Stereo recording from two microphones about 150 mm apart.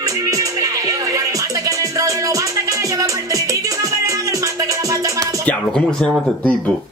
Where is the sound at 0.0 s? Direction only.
20° right (ahead or behind).